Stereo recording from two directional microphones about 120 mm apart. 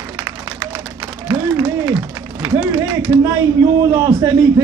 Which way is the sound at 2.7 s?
25° right (ahead or behind).